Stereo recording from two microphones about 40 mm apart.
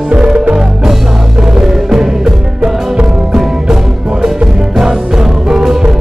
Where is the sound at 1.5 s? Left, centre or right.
Centre.